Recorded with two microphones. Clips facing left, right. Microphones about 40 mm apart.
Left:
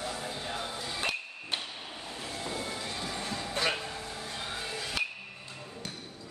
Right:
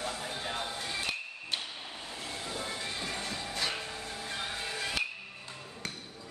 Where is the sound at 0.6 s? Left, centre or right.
Right.